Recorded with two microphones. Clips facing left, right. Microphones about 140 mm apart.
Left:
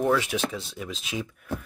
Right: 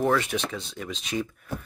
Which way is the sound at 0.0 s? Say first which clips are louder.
Even; centre (ahead or behind).